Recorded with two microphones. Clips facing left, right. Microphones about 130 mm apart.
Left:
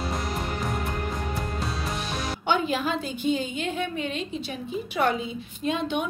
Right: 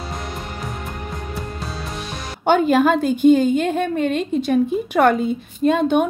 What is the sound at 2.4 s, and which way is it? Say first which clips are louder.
A woman's voice: right 11 dB; 50° right (ahead or behind).